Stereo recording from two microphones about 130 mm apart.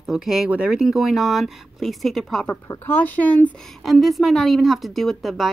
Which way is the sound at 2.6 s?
20° left (ahead or behind).